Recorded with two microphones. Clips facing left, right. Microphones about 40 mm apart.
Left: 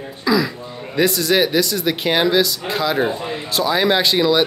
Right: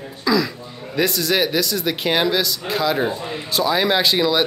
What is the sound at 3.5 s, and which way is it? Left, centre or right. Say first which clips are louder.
Speech: left 1 dB; centre.